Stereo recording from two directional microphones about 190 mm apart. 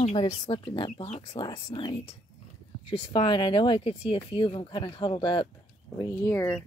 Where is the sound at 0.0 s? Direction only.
35° left (ahead or behind).